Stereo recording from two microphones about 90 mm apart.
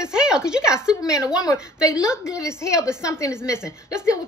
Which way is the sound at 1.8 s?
35° left (ahead or behind).